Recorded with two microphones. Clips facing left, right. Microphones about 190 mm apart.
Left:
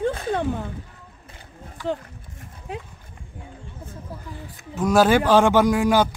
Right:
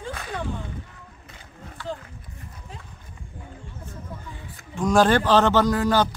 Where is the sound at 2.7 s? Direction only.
65° left (ahead or behind).